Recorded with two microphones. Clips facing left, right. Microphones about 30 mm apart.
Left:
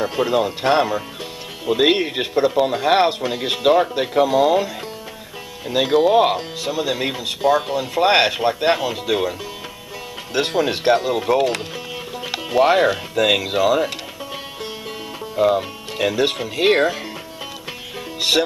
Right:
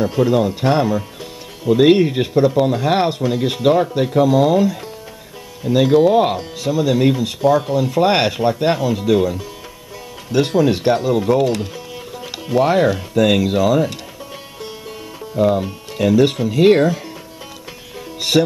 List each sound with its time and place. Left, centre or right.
0.0 s speech: centre
15.3 s speech: centre